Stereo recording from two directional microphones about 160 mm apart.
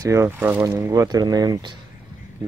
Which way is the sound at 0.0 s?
15° right (ahead or behind).